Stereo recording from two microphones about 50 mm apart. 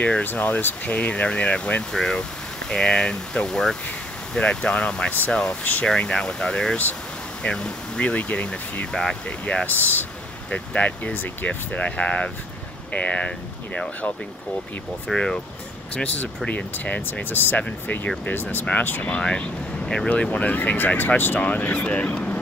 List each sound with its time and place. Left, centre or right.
0.2 s speech: left; by 5.6 s centre
5.6 s speech: left
5.9 s speech: centre
8.9 s speech: centre
9.7 s speech: left
10.5 s speech: left
15.1 s speech: centre
15.9 s speech: left
17.0 s speech: left
19.0 s speech: centre